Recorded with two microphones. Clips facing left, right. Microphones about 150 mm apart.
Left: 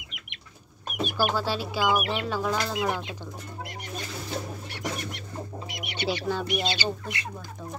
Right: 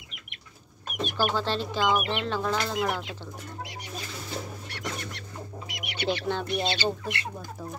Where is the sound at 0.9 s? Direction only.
10° left (ahead or behind).